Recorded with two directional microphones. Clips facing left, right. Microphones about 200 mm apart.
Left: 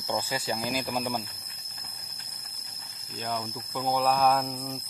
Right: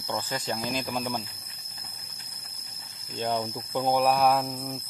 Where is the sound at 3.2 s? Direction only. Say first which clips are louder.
Right 5 dB; 25° right (ahead or behind).